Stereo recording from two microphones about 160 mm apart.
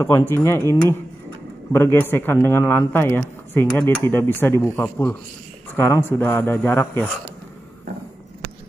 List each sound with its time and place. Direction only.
0.3 s speech: 15° left (ahead or behind)